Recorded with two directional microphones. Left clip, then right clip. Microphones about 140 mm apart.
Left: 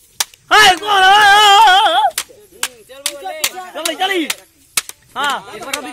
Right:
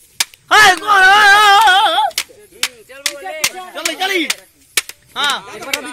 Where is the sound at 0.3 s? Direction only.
55° left (ahead or behind); by 2.1 s 35° left (ahead or behind).